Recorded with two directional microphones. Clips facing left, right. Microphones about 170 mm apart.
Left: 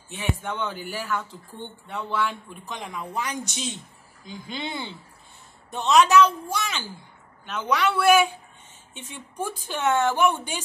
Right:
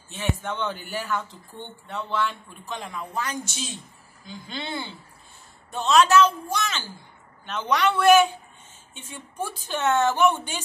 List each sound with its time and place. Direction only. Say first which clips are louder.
0.1 s a woman's voice: even; 10° left (ahead or behind)